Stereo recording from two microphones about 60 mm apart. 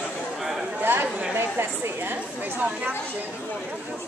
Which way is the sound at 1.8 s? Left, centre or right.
Right.